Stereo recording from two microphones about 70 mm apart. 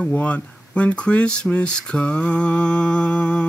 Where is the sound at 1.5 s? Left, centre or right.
Centre.